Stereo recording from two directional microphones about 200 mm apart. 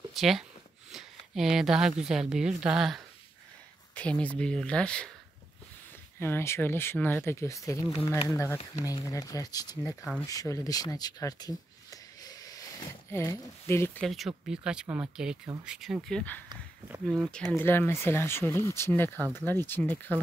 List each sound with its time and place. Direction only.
0.1 s a woman's voice: centre (ahead or behind)
6.1 s speech: 10° left (ahead or behind)